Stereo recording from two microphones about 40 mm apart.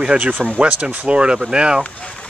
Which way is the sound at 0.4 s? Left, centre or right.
Right.